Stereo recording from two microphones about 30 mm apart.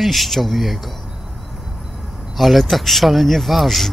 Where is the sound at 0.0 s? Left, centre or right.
Centre.